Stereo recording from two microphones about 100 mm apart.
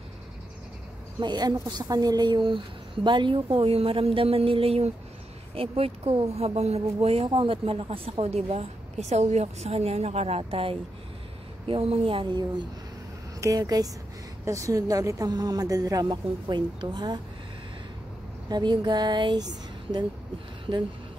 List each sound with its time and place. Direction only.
1.2 s speech: 45° right (ahead or behind); by 12.3 s 65° right (ahead or behind)
13.4 s speech: 40° right (ahead or behind)
16.1 s a woman's voice: 50° right (ahead or behind)
18.5 s a woman's voice: 50° right (ahead or behind)